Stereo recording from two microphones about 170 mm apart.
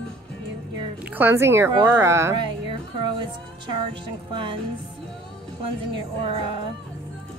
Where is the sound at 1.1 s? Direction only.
15° right (ahead or behind).